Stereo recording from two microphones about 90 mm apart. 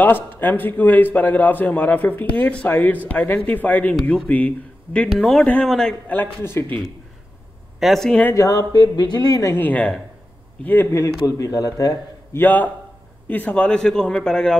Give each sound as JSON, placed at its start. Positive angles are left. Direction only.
{"t": 0.0, "sound": "a man's voice", "side_deg": 20}
{"t": 5.1, "sound": "speech", "side_deg": 0}
{"t": 5.4, "sound": "speech", "side_deg": 15}
{"t": 6.0, "sound": "a man's voice", "side_deg": 15}
{"t": 7.8, "sound": "speech", "side_deg": 0}
{"t": 8.4, "sound": "a man's voice", "side_deg": 40}
{"t": 8.9, "sound": "speech", "side_deg": 55}
{"t": 9.5, "sound": "a man's voice", "side_deg": 20}
{"t": 11.2, "sound": "a man's voice", "side_deg": 40}
{"t": 12.4, "sound": "a man's voice", "side_deg": 20}